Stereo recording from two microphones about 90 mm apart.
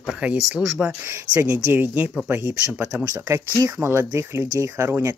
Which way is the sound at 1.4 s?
20° right (ahead or behind).